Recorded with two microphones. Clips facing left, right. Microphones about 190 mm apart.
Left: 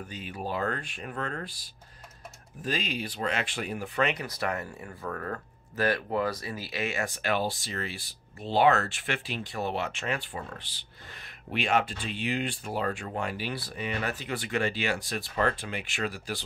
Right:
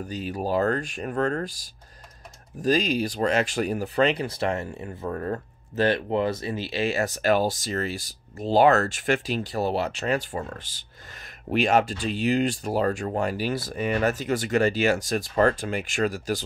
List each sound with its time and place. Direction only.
0.0 s speech: 40° right (ahead or behind)
2.6 s speech: 40° right (ahead or behind)